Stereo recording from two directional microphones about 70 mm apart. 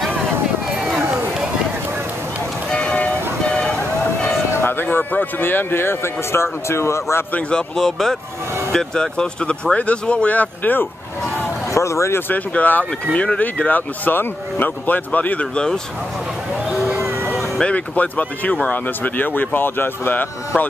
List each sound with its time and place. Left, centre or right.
2.7 s vehicle: centre
4.6 s speech: left
7.3 s speech: centre; by 10.9 s left
11.7 s speech: left
12.3 s speech: left
17.6 s speech: centre